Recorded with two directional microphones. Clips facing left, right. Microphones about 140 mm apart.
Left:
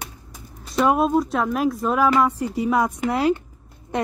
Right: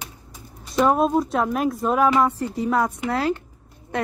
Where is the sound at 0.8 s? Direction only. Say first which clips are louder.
Left 1 dB; centre (ahead or behind).